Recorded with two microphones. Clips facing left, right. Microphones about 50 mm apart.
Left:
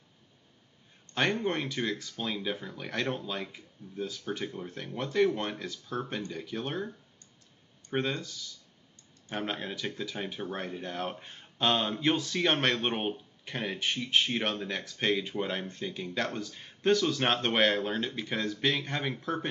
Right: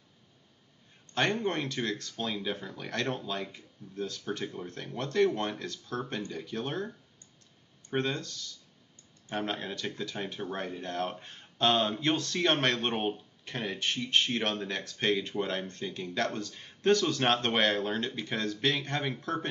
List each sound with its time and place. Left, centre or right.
1.1 s speech: centre
7.9 s speech: centre